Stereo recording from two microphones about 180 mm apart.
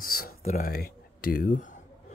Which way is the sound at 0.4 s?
40° left (ahead or behind).